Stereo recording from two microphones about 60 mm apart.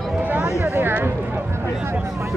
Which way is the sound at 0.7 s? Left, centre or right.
Right.